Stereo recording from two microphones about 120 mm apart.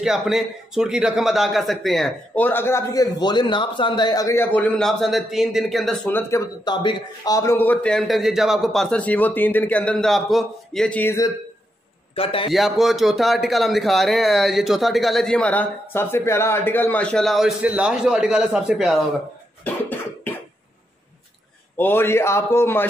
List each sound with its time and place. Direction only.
0.0 s speech: 5° right (ahead or behind)
2.3 s a man's voice: 15° left (ahead or behind); by 4.4 s 30° left (ahead or behind)
4.4 s speech: 15° left (ahead or behind)
6.0 s speech: 20° left (ahead or behind)
6.6 s a man's voice: 40° left (ahead or behind)
7.3 s a man's voice: 20° left (ahead or behind)
8.1 s speech: 5° right (ahead or behind)
9.0 s a man's voice: 15° left (ahead or behind)
12.2 s a man's voice: 50° left (ahead or behind)
12.4 s speech: centre (ahead or behind)
19.6 s cough: 15° left (ahead or behind)
21.7 s speech: 15° left (ahead or behind)